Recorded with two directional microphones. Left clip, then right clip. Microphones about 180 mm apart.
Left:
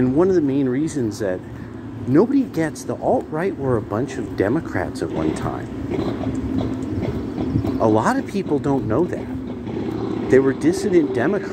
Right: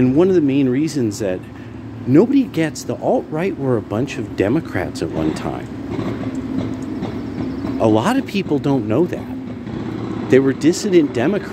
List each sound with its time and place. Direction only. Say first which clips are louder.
0.0 s speech: right 3 dB; 20° right (ahead or behind)
7.8 s speech: right 2 dB; 15° right (ahead or behind)
10.2 s speech: right 2 dB; 35° right (ahead or behind)
10.6 s speech: right 3 dB; 15° right (ahead or behind)